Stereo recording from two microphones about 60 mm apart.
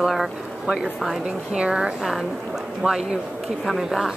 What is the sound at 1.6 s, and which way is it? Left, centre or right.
Speech, centre.